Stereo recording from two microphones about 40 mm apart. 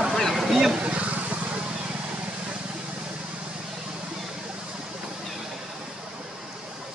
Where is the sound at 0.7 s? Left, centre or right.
Right.